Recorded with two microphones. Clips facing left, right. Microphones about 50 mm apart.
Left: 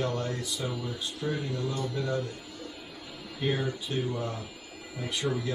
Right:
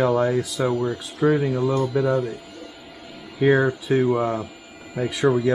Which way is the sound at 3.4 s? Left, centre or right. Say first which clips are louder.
Right 12 dB; right.